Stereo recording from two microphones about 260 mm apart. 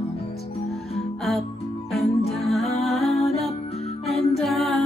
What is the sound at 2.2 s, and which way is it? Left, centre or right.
Music, centre.